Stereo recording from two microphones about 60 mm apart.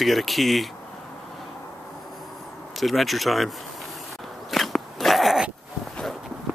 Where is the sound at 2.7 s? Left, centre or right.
Centre.